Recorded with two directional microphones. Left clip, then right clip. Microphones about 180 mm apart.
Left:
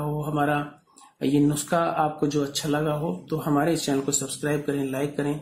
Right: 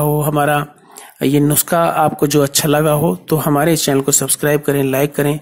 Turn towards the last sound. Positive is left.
turn(degrees=-40)  # may be behind; listen again after turning